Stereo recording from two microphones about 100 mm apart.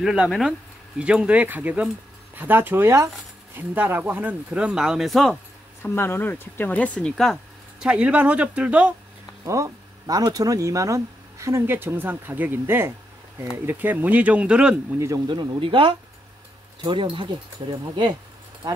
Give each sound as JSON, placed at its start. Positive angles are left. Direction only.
{"t": 0.0, "sound": "speech", "side_deg": -5}
{"t": 5.8, "sound": "speech", "side_deg": 25}
{"t": 7.8, "sound": "speech", "side_deg": -10}
{"t": 9.5, "sound": "speech", "side_deg": -35}
{"t": 15.2, "sound": "speech", "side_deg": -55}